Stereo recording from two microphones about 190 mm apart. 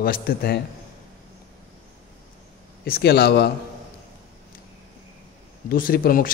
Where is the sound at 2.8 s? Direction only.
55° left (ahead or behind).